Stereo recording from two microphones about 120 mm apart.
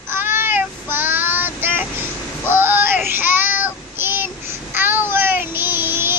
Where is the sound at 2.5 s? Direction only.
20° right (ahead or behind).